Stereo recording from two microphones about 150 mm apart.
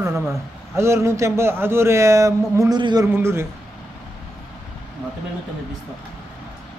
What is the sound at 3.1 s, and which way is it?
Speech, 15° right (ahead or behind).